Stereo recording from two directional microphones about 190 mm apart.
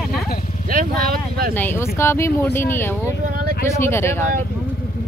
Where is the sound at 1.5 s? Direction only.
10° left (ahead or behind).